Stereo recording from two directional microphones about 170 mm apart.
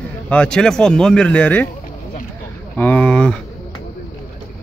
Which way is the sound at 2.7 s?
10° left (ahead or behind).